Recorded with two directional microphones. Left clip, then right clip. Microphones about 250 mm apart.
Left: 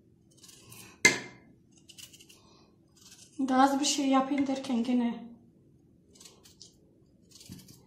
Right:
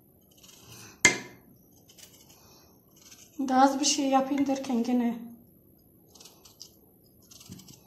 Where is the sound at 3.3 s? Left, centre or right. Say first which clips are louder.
Right 2 dB; right.